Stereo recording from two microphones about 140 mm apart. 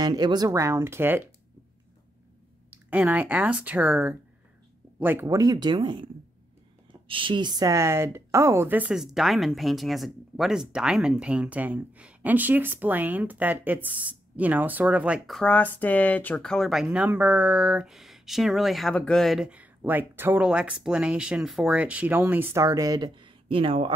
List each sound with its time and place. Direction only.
0.0 s speech: 30° right (ahead or behind); by 1.3 s 15° right (ahead or behind)
2.7 s a woman's voice: 10° right (ahead or behind); by 23.9 s 40° right (ahead or behind)